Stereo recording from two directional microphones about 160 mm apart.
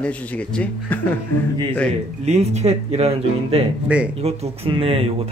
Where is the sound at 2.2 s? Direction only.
45° right (ahead or behind).